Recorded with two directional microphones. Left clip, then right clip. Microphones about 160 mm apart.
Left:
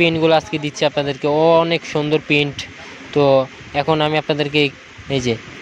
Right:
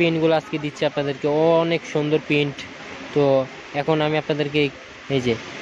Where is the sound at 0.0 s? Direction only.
40° left (ahead or behind).